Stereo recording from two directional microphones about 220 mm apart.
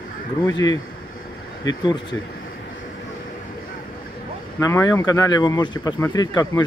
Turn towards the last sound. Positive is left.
turn(degrees=15)  # may be behind; listen again after turning